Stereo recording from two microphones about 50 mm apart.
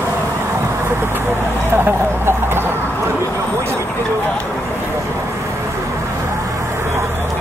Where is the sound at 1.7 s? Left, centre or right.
Right.